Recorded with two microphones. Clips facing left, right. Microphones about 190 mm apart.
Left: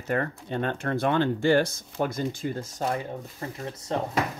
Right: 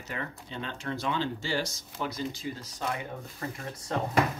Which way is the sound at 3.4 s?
25° left (ahead or behind).